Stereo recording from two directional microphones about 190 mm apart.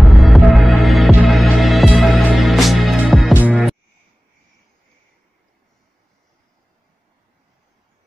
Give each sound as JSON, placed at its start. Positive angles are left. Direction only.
{"t": 0.1, "sound": "music", "side_deg": 0}